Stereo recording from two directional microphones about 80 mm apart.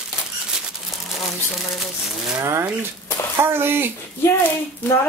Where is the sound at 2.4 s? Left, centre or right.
Right.